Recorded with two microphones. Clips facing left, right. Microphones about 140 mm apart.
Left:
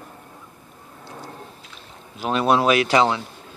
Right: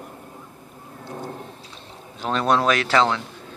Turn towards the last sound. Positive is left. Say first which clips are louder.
# left 2 dB
turn(degrees=15)  # may be behind; listen again after turning